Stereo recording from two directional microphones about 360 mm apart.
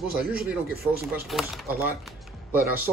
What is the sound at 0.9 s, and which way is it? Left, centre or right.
Speech, right.